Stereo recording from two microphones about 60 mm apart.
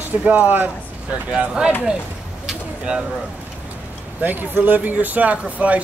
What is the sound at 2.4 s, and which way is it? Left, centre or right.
Bird, centre.